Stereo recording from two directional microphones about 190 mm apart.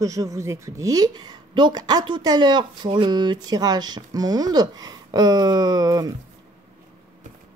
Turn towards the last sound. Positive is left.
turn(degrees=-20)  # may be behind; listen again after turning